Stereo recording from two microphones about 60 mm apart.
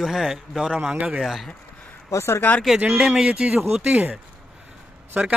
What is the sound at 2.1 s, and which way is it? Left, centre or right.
Speech, left.